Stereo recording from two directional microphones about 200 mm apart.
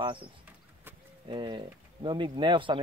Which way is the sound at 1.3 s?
25° right (ahead or behind).